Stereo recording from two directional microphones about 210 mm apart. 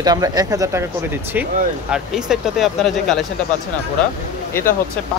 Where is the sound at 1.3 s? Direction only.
5° right (ahead or behind).